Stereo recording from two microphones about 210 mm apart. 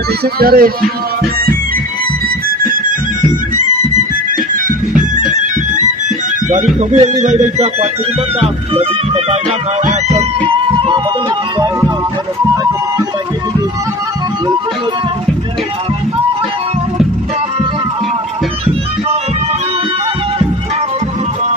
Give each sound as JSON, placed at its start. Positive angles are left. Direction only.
{"t": 0.2, "sound": "speech", "side_deg": -45}
{"t": 6.5, "sound": "music", "side_deg": -35}
{"t": 8.4, "sound": "speech", "side_deg": -25}
{"t": 9.8, "sound": "a sound", "side_deg": -35}